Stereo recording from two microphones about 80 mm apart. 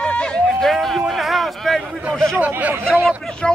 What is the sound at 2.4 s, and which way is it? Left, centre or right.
Speech, centre.